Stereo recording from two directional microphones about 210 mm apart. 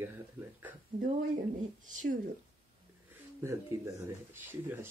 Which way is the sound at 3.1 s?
15° right (ahead or behind).